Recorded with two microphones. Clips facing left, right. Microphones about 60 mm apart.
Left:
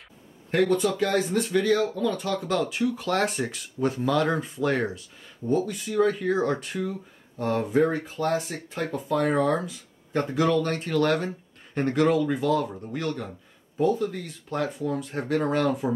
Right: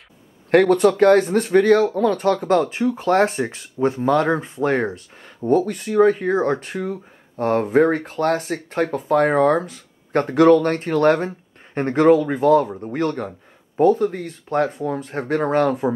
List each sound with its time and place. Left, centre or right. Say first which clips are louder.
0.5 s speech: right 8 dB; right
2.7 s speech: right 7 dB; right
4.9 s speech: right 4 dB; right
9.7 s speech: right 7 dB; right